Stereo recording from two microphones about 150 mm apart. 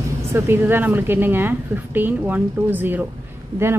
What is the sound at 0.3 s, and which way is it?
A woman's voice, 15° right (ahead or behind).